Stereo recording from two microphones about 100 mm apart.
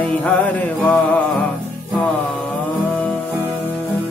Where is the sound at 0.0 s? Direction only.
15° left (ahead or behind).